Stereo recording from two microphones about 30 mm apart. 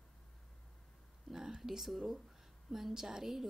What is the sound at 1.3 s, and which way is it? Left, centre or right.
Whispering, centre.